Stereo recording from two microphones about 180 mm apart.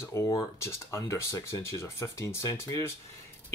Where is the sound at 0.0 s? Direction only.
15° left (ahead or behind).